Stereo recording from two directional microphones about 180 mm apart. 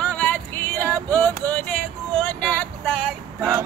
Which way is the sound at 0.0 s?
5° left (ahead or behind).